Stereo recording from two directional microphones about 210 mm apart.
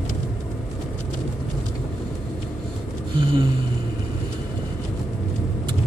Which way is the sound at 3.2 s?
25° right (ahead or behind).